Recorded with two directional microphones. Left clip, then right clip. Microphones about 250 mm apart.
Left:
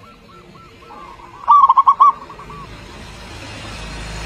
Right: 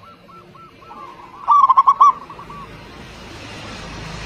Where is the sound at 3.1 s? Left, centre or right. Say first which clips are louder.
Left 1 dB; left.